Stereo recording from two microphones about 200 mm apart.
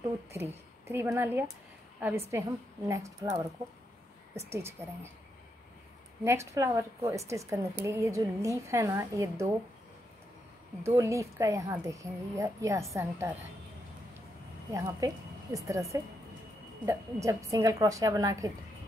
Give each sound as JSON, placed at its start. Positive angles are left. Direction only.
{"t": 0.3, "sound": "a woman's voice", "side_deg": -15}
{"t": 4.4, "sound": "a woman's voice", "side_deg": -15}
{"t": 6.2, "sound": "a woman's voice", "side_deg": -15}
{"t": 10.8, "sound": "a woman's voice", "side_deg": -15}
{"t": 14.7, "sound": "a woman's voice", "side_deg": -15}